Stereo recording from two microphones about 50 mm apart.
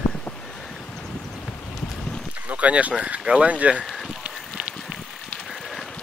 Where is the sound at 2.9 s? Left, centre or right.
Right.